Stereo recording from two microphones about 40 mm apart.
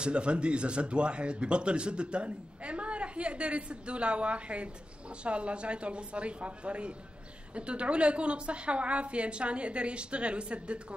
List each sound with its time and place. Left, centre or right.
0.0 s speech: right